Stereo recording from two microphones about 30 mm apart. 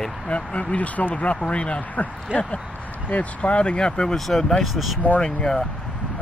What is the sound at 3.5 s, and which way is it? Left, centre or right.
Speech, left.